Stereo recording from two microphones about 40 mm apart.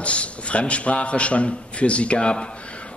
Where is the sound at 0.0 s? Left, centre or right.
Left.